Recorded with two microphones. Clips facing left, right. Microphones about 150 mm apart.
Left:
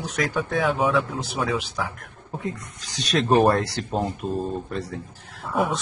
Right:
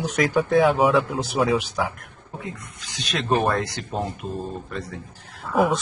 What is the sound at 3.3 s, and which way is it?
Speech, 35° left (ahead or behind).